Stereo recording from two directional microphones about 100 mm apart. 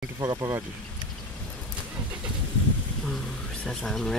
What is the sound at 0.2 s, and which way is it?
Speech, 35° right (ahead or behind).